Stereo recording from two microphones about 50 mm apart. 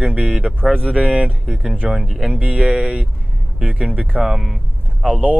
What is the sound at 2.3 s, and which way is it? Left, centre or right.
Speech, right.